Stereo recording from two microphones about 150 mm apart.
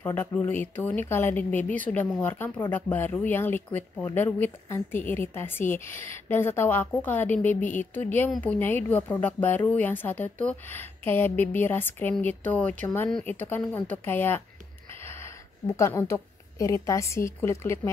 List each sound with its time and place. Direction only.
0.0 s a woman's voice: 15° left (ahead or behind)